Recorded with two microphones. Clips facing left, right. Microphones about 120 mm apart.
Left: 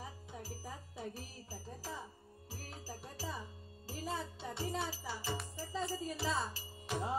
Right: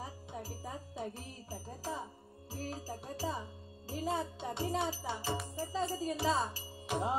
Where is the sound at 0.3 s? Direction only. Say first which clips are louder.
Right 4 dB; 25° right (ahead or behind).